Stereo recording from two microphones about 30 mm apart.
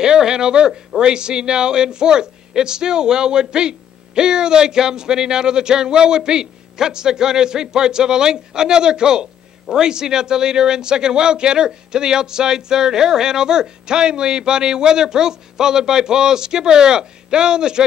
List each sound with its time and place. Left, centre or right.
0.0 s speech: right